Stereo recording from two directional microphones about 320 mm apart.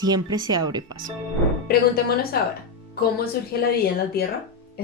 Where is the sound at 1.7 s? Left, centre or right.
Left.